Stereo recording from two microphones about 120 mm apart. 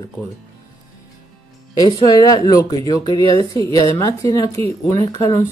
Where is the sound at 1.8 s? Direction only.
30° left (ahead or behind).